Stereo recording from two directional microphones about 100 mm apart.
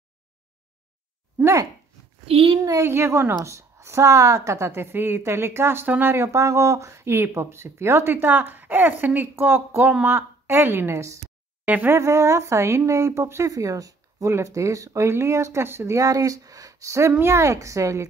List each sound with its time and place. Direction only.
1.4 s a woman's voice: 30° right (ahead or behind)
2.2 s a woman's voice: 70° right (ahead or behind)
2.6 s a woman's voice: 30° right (ahead or behind)
11.6 s speech: 20° right (ahead or behind)
12.0 s a woman's voice: 30° right (ahead or behind)